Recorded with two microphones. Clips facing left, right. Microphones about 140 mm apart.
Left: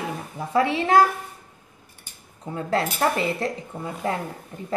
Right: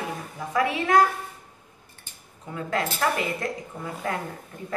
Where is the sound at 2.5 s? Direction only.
30° left (ahead or behind).